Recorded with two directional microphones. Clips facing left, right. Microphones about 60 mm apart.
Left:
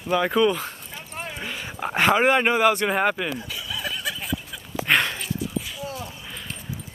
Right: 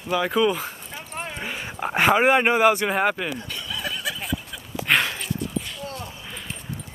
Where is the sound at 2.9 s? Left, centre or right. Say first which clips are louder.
Even; centre.